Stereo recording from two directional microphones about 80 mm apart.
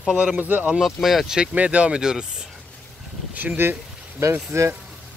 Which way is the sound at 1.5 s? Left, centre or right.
Centre.